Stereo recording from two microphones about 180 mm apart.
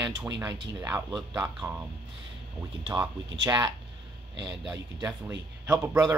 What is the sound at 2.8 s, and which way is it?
A man's voice, 25° right (ahead or behind).